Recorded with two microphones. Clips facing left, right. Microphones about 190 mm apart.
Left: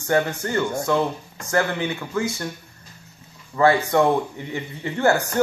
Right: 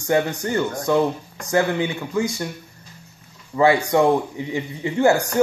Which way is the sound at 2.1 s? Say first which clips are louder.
Right 3 dB; 15° right (ahead or behind).